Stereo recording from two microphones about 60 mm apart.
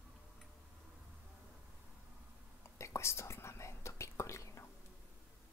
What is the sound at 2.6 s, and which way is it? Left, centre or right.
Whispering, left.